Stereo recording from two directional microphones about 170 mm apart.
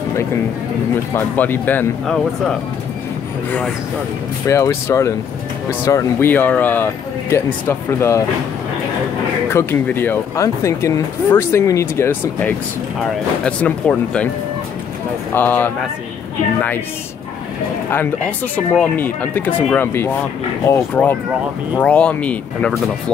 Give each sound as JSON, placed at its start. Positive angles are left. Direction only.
{"t": 1.1, "sound": "speech", "side_deg": 10}
{"t": 4.5, "sound": "speech", "side_deg": 15}
{"t": 9.5, "sound": "speech", "side_deg": 15}
{"t": 15.3, "sound": "speech", "side_deg": 10}
{"t": 18.8, "sound": "speech", "side_deg": 10}